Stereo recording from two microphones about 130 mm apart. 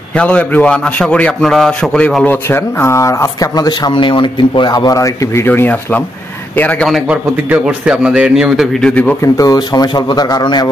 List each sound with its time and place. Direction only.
0.1 s a man's voice: 10° left (ahead or behind)
7.1 s a man's voice: 10° right (ahead or behind)
9.2 s speech: 25° left (ahead or behind)